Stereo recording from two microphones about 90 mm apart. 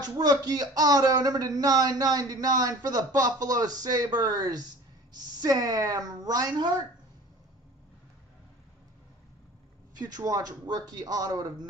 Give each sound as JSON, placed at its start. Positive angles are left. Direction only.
{"t": 0.0, "sound": "speech", "side_deg": -45}
{"t": 9.9, "sound": "speech", "side_deg": -45}